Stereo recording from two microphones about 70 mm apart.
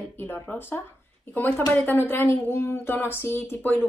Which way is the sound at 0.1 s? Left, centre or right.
Left.